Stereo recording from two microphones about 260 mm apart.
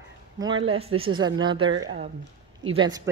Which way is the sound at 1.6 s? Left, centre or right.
Right.